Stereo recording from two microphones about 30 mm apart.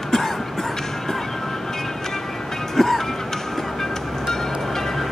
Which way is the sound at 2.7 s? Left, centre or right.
Centre.